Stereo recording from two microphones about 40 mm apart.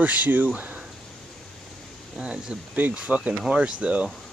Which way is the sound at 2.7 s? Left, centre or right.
Right.